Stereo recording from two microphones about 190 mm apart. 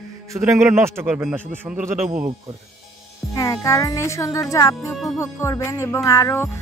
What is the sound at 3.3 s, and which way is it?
Music, 20° left (ahead or behind).